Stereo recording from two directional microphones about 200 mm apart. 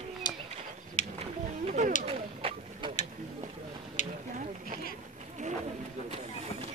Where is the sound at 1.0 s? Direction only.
35° left (ahead or behind).